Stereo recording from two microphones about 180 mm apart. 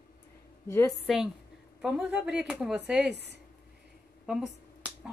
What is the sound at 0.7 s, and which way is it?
Speech, 15° left (ahead or behind).